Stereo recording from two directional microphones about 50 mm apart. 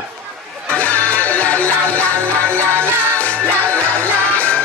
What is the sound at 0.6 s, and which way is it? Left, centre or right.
Music, left.